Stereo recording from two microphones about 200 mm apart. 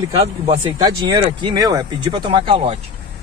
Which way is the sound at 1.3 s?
20° right (ahead or behind).